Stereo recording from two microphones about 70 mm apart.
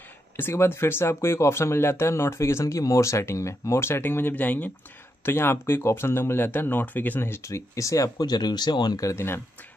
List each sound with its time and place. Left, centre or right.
0.4 s speech: left
8.3 s speech: left
9.1 s speech: left